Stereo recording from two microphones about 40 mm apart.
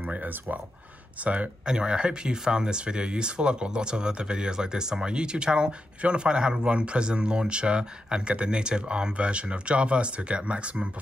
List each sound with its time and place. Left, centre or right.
0.0 s a sound: right
1.2 s speech: right
1.7 s speech: right